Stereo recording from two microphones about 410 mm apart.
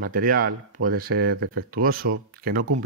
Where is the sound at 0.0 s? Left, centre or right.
Right.